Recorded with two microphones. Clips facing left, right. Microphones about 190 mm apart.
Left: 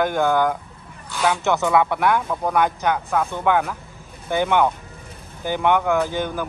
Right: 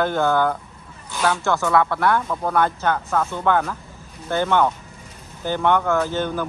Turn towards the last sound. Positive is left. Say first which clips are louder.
# right 1 dB
turn(degrees=10)  # may be behind; listen again after turning